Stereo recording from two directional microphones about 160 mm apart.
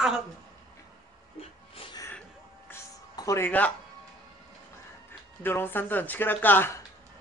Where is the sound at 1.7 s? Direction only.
35° left (ahead or behind).